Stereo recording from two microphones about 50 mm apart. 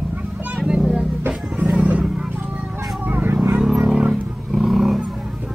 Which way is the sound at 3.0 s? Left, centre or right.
Right.